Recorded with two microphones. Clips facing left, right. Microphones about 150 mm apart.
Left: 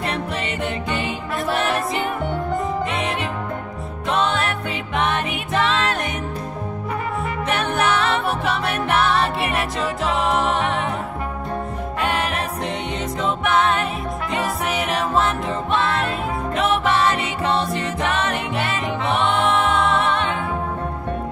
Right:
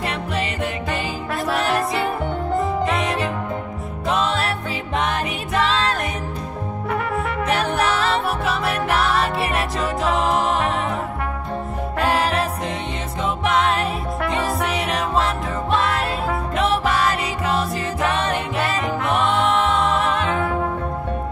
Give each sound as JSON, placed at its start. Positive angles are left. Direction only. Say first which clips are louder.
{"t": 4.1, "sound": "music", "louder": "left 1 dB", "side_deg": -35}
{"t": 6.9, "sound": "brass instrument", "louder": "right 3 dB", "side_deg": -70}
{"t": 7.4, "sound": "music", "louder": "even", "side_deg": -35}
{"t": 10.2, "sound": "music", "louder": "even", "side_deg": -35}
{"t": 12.0, "sound": "music", "louder": "right 4 dB", "side_deg": -35}
{"t": 14.3, "sound": "music", "louder": "even", "side_deg": 0}
{"t": 18.0, "sound": "music", "louder": "right 2 dB", "side_deg": -35}